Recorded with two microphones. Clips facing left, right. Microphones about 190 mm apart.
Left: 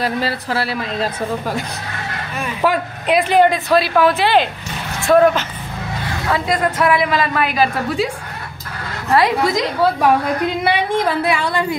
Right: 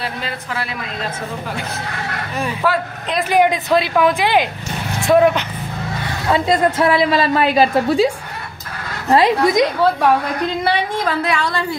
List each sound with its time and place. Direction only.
0.0 s a woman's voice: 35° left (ahead or behind)
2.6 s a woman's voice: 15° left (ahead or behind)
3.2 s speech: 10° right (ahead or behind)
6.3 s a woman's voice: 25° right (ahead or behind)
9.1 s a woman's voice: 20° right (ahead or behind)
10.6 s a woman's voice: 10° left (ahead or behind)